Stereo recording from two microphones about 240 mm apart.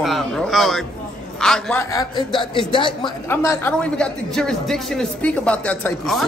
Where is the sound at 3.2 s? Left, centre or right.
Centre.